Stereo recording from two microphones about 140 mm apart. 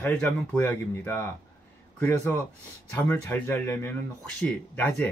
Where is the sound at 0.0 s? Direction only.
10° left (ahead or behind).